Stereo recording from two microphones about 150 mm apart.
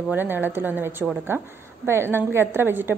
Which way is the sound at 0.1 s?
15° right (ahead or behind).